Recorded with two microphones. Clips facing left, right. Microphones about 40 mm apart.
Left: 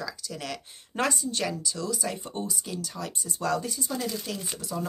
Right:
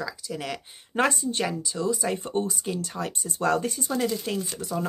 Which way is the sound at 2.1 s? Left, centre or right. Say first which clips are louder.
Right 6 dB; right.